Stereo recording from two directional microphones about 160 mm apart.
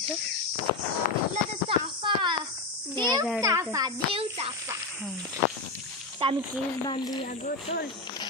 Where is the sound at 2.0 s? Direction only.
30° right (ahead or behind).